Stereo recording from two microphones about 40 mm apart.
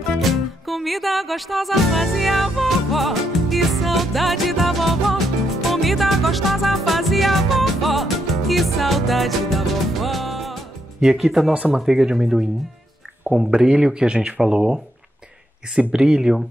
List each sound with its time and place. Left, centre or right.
0.2 s music: centre
11.1 s speech: centre
13.5 s speech: centre
15.9 s speech: centre